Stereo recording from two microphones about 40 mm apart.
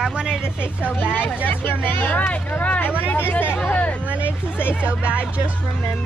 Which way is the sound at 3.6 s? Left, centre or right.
Left.